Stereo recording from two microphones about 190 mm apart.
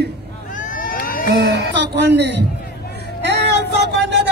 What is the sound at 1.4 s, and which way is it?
Speech, 60° right (ahead or behind).